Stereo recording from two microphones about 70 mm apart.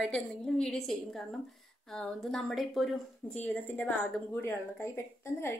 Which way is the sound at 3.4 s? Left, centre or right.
Left.